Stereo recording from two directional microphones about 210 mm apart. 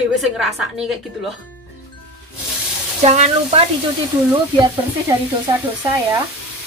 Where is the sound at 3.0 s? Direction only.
30° right (ahead or behind).